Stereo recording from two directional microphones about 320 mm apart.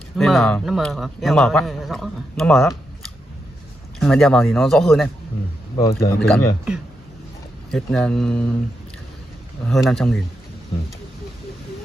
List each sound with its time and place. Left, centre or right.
0.2 s a man's voice: centre
4.0 s a man's voice: centre
9.7 s a man's voice: centre